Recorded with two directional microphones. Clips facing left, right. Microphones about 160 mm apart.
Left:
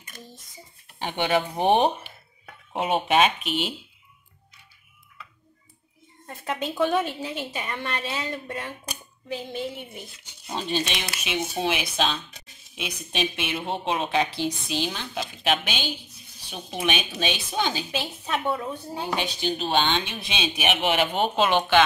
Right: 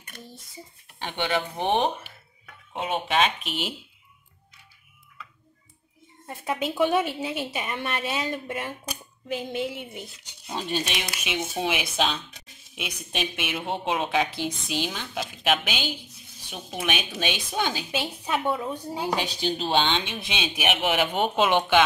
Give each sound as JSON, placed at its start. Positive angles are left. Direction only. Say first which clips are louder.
{"t": 0.1, "sound": "a sound", "louder": "right 1 dB", "side_deg": -60}
{"t": 0.9, "sound": "speech", "louder": "left 3 dB", "side_deg": 15}
{"t": 3.4, "sound": "speech", "louder": "left 4 dB", "side_deg": 0}
{"t": 6.2, "sound": "a woman's voice", "louder": "right 1 dB", "side_deg": -10}
{"t": 18.4, "sound": "speech", "louder": "even", "side_deg": 0}
{"t": 18.7, "sound": "a woman's voice", "louder": "right 2 dB", "side_deg": -15}